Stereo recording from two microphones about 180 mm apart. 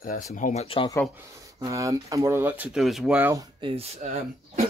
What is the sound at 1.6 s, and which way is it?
Speech, 15° right (ahead or behind).